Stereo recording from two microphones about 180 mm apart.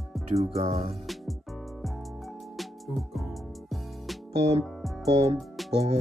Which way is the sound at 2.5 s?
Centre (ahead or behind).